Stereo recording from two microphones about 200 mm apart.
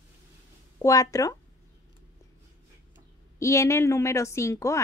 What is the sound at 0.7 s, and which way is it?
Speech, 15° left (ahead or behind).